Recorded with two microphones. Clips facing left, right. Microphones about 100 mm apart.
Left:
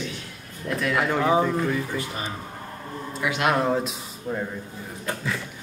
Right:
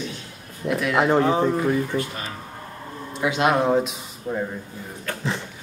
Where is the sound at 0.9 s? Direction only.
25° right (ahead or behind).